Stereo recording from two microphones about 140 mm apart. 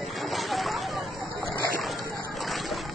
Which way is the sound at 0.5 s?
Centre (ahead or behind).